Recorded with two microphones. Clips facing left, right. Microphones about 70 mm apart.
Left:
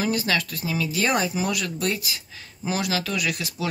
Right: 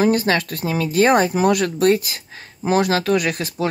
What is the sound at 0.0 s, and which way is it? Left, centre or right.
A man's voice, right.